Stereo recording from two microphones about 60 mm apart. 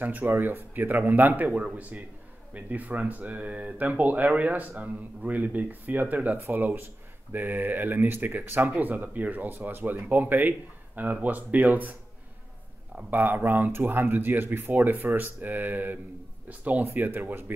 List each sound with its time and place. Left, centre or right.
0.0 s speech: right
13.1 s speech: right